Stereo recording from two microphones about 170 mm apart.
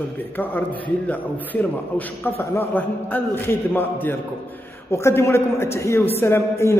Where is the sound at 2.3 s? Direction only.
15° left (ahead or behind).